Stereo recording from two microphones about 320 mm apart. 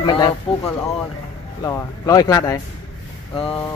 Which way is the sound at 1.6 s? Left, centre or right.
Centre.